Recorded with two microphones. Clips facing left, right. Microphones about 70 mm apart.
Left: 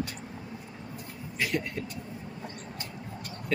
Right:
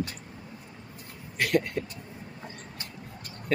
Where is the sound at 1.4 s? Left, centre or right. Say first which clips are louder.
Right 5 dB; right.